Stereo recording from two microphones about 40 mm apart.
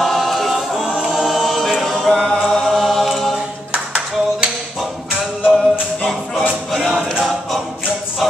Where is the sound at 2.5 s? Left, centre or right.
Centre.